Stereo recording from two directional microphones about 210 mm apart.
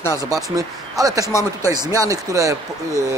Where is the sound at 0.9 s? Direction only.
15° right (ahead or behind).